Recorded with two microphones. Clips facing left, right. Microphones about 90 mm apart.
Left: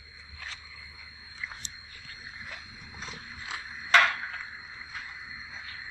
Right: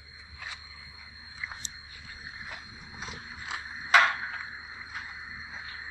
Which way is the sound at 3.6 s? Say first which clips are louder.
Right 1 dB; 25° right (ahead or behind).